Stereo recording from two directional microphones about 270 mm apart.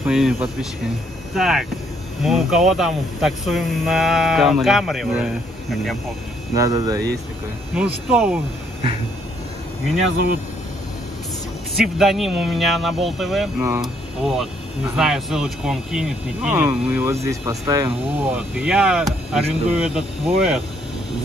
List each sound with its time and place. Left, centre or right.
0.0 s speech: centre
6.5 s speech: centre
7.7 s speech: centre
11.7 s speech: centre